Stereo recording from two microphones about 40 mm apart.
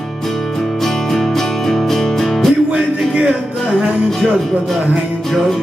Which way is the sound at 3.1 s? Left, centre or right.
Right.